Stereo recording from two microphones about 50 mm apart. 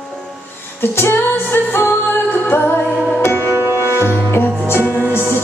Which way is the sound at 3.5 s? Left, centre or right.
Right.